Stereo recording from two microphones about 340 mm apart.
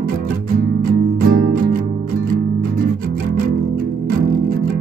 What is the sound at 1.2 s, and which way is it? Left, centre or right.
Music, right.